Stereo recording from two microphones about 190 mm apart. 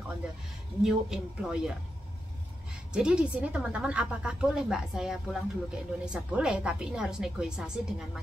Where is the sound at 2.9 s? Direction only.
5° right (ahead or behind).